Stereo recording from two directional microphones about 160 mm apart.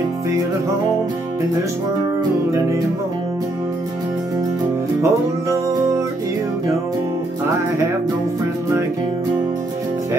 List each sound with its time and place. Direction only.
5.0 s music: 20° right (ahead or behind)